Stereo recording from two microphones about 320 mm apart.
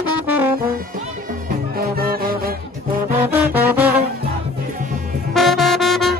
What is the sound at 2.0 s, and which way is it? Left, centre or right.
Music, right.